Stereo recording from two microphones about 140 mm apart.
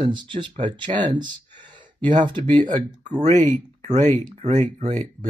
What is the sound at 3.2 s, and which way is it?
Speech, 60° right (ahead or behind).